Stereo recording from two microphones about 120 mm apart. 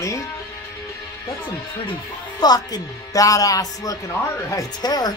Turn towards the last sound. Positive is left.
turn(degrees=35)  # may be behind; listen again after turning